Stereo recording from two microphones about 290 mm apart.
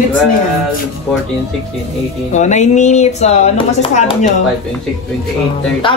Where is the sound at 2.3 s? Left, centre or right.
Left.